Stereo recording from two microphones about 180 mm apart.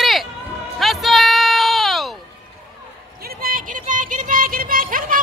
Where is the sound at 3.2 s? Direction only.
55° right (ahead or behind).